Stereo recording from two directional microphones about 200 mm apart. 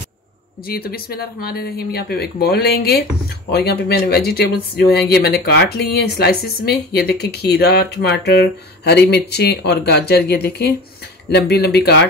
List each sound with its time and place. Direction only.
0.7 s speech: 50° left (ahead or behind)